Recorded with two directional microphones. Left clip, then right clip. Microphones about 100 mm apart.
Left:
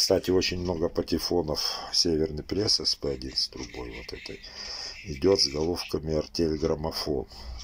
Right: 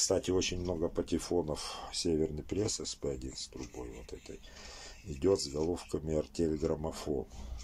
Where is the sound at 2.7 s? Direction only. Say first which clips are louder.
Left 11 dB; 40° right (ahead or behind).